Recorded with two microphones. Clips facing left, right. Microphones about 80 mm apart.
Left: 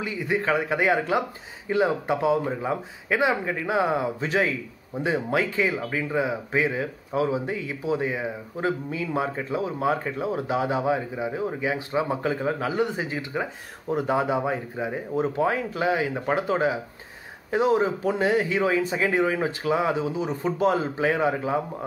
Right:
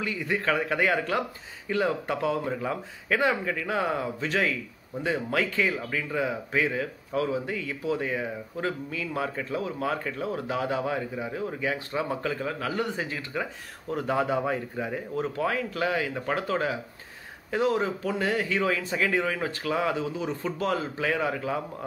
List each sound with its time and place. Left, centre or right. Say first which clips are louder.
0.0 s speech: left 2 dB; centre